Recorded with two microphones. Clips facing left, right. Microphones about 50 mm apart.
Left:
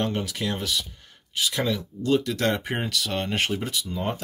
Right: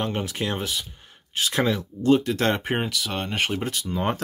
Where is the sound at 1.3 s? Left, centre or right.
Right.